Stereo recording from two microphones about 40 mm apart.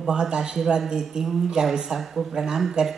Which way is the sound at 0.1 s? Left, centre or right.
Centre.